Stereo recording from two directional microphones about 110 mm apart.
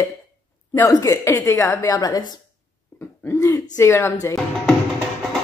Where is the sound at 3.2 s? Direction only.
25° left (ahead or behind).